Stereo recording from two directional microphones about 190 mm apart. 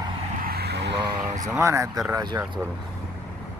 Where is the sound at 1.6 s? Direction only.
15° right (ahead or behind).